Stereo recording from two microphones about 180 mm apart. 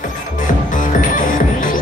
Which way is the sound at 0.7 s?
45° left (ahead or behind).